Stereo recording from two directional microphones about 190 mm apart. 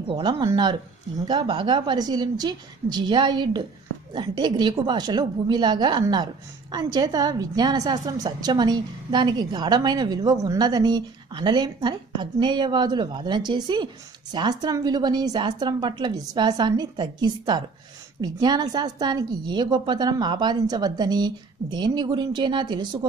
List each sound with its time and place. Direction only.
0.1 s a woman's voice: 20° right (ahead or behind)